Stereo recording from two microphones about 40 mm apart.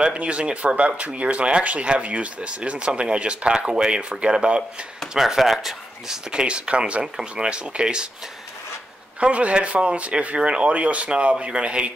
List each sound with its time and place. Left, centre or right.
0.0 s speech: right; by 6.1 s centre
6.3 s speech: right
9.2 s speech: right